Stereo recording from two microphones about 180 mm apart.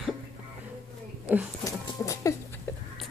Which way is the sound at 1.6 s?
15° left (ahead or behind).